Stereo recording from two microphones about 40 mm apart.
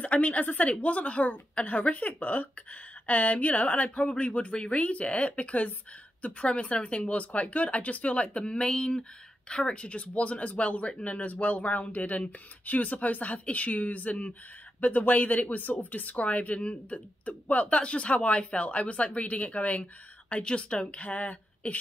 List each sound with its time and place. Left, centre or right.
0.0 s a woman's voice: left